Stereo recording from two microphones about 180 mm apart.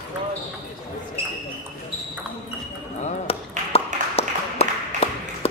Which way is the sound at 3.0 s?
35° left (ahead or behind).